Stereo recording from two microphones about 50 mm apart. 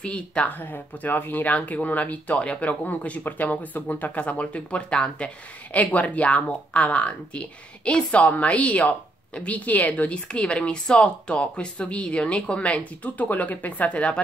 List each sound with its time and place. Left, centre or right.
0.0 s speech: left